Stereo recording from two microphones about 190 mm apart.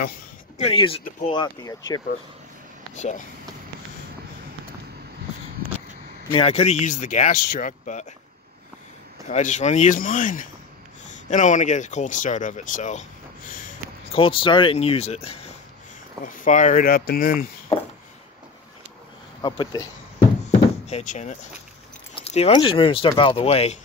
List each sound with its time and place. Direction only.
0.6 s speech: 30° left (ahead or behind)
2.9 s speech: 40° left (ahead or behind)
6.3 s speech: 35° left (ahead or behind)
9.3 s speech: 40° left (ahead or behind)
14.1 s speech: 25° left (ahead or behind); by 17.5 s 50° left (ahead or behind)
19.4 s speech: 20° left (ahead or behind)
20.4 s door: 35° left (ahead or behind)
22.2 s speech: 30° left (ahead or behind)